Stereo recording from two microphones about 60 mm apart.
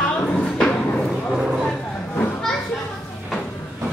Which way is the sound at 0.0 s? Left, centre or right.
Left.